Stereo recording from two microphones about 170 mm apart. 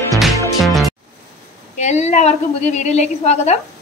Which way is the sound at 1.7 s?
40° left (ahead or behind).